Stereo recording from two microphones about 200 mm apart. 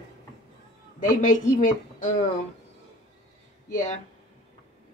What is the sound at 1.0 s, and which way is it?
Speech, 40° left (ahead or behind).